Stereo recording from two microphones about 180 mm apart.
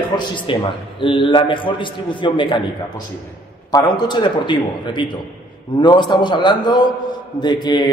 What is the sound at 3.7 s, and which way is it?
A man's voice, 20° left (ahead or behind).